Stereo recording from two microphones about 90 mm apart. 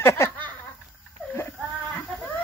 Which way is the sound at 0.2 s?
30° left (ahead or behind).